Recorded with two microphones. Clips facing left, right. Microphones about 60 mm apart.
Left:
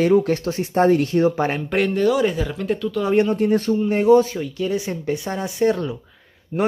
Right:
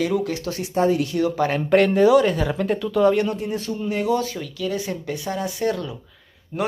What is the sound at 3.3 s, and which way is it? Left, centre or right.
Speech, left.